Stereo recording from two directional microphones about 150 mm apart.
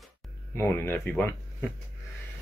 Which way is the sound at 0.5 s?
15° left (ahead or behind).